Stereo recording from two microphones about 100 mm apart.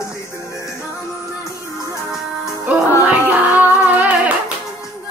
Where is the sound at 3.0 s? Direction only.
15° right (ahead or behind).